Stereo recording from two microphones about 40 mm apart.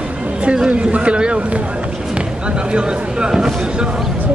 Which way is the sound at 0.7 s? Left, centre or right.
Right.